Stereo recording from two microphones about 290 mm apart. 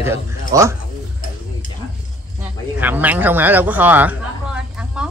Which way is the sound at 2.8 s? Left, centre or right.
Centre.